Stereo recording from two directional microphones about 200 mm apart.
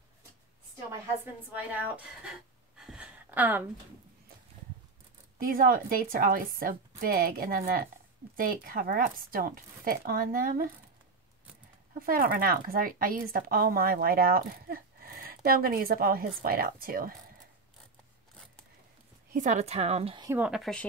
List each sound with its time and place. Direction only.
1.2 s a woman's voice: 10° right (ahead or behind)
2.8 s a sound: 5° right (ahead or behind)
5.4 s a woman's voice: 45° right (ahead or behind)
12.1 s a woman's voice: 45° right (ahead or behind)
19.3 s a woman's voice: 35° right (ahead or behind)
20.2 s a woman's voice: 5° right (ahead or behind)